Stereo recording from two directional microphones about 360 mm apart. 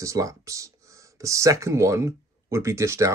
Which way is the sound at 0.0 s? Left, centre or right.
Centre.